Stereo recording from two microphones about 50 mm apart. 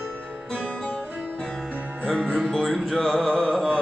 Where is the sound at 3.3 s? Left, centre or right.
Centre.